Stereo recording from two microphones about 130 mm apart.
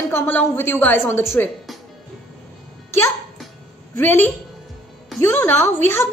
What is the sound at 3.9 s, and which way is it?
A woman's voice, 15° left (ahead or behind).